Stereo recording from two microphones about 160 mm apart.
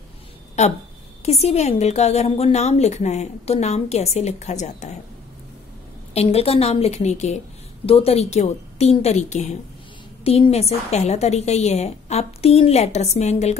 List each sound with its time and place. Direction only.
0.6 s a woman's voice: 45° left (ahead or behind)
6.1 s a woman's voice: 40° left (ahead or behind)